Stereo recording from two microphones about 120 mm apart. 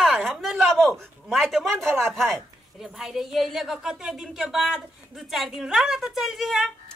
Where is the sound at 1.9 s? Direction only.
20° right (ahead or behind).